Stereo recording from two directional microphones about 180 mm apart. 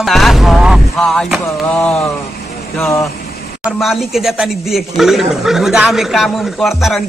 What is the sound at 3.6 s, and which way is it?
Speech, centre (ahead or behind).